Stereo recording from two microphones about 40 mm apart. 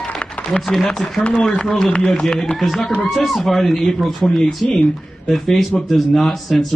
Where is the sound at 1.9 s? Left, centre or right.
Left.